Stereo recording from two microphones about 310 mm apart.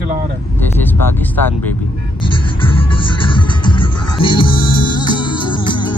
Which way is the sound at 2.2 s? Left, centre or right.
Centre.